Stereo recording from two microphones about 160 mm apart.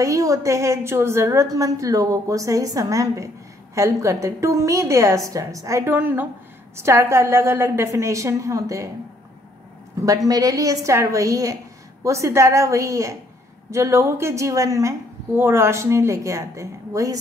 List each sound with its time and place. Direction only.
0.0 s a woman's voice: 20° right (ahead or behind)
10.0 s a woman's voice: 20° right (ahead or behind)